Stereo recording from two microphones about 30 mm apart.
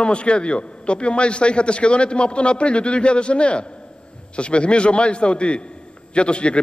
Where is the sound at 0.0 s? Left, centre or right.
Left.